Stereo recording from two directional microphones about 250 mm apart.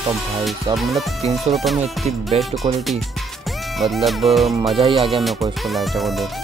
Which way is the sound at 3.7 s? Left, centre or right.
Centre.